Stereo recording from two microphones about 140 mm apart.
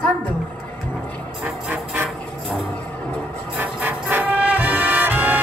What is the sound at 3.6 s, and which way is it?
Brass instrument, 10° right (ahead or behind).